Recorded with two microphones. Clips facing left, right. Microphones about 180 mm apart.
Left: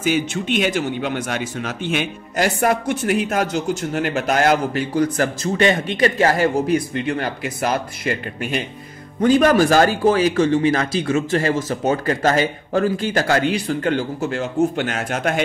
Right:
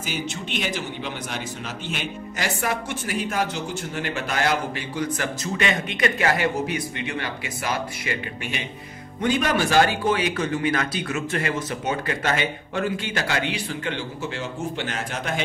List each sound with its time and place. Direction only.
0.0 s a man's voice: 60° left (ahead or behind)